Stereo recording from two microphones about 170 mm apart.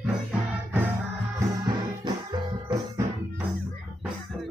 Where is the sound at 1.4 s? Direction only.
20° right (ahead or behind).